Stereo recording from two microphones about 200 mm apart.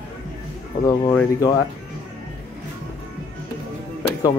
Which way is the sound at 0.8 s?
20° left (ahead or behind).